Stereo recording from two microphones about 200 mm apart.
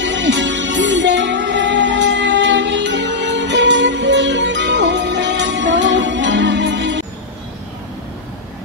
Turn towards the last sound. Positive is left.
turn(degrees=-65)  # may be behind; listen again after turning